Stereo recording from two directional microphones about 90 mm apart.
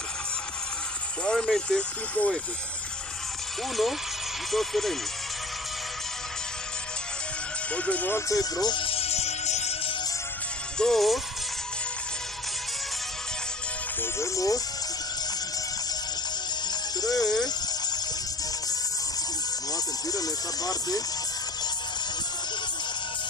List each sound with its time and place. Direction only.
1.2 s speech: 10° left (ahead or behind)
4.5 s speech: 5° left (ahead or behind)
7.7 s speech: 15° left (ahead or behind)
8.3 s speech: 45° left (ahead or behind)
8.7 s music: 85° left
10.8 s speech: 5° left (ahead or behind)
14.2 s speech: 40° left (ahead or behind)
17.0 s a sound: 45° left (ahead or behind)
19.7 s speech: 45° left (ahead or behind)